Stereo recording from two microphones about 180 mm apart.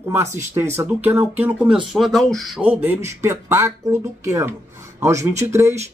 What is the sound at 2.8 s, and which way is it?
Speech, 15° right (ahead or behind).